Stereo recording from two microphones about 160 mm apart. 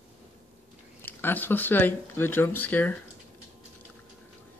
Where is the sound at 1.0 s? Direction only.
10° left (ahead or behind).